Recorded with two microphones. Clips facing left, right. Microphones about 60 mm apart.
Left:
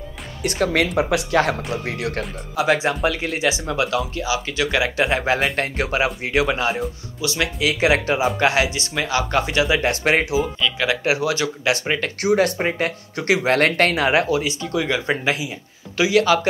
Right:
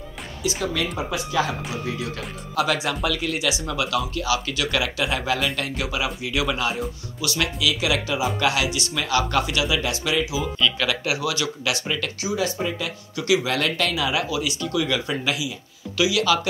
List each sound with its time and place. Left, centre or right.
0.4 s speech: left
0.9 s speech: left
2.5 s speech: left
7.6 s speech: left
10.9 s speech: left
12.2 s speech: left